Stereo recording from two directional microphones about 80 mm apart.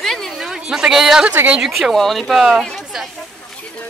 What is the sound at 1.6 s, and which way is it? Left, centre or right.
A woman's voice, centre.